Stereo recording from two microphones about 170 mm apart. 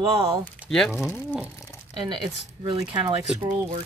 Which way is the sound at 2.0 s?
30° right (ahead or behind).